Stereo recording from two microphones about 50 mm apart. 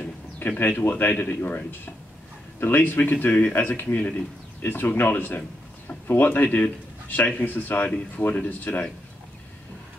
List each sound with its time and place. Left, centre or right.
0.6 s speech: left